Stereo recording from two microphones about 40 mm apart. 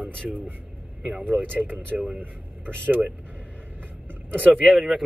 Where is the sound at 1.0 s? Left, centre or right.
Right.